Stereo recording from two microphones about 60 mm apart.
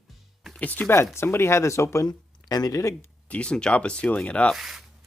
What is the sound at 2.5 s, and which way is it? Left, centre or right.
Speech, left.